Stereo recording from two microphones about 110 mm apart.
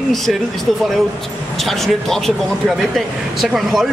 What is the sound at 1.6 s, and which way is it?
Speech, centre (ahead or behind).